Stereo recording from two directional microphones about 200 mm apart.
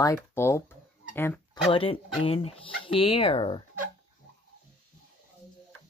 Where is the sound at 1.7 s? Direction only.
30° left (ahead or behind).